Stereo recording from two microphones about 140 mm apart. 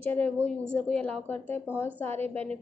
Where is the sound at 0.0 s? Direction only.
15° left (ahead or behind).